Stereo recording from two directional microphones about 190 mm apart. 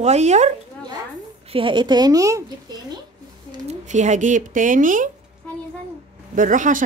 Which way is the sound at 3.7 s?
40° right (ahead or behind).